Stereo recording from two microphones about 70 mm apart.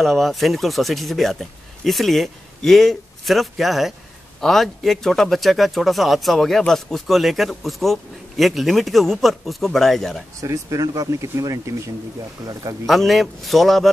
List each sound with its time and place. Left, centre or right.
0.0 s speech: centre
10.4 s speech: right
12.8 s speech: centre